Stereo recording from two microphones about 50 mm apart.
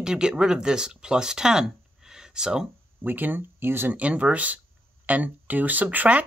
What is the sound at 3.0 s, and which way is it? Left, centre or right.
Speech, right.